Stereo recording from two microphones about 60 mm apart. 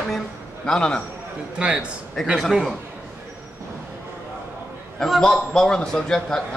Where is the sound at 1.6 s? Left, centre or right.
Centre.